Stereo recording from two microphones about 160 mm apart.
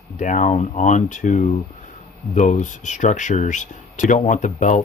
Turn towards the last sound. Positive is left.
turn(degrees=50)  # may be behind; listen again after turning